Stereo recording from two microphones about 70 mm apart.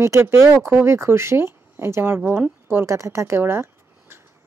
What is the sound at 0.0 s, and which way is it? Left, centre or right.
A woman's voice, right.